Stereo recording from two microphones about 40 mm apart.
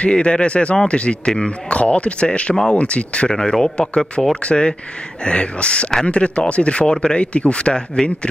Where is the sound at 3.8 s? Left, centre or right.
Left.